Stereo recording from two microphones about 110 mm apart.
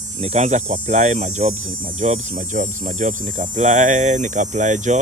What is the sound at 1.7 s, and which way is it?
Hum, 55° right (ahead or behind).